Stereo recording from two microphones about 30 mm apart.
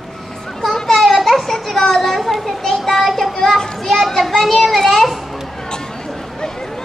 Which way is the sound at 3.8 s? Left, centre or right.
Centre.